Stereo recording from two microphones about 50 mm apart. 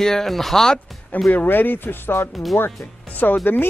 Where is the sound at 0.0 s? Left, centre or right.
Centre.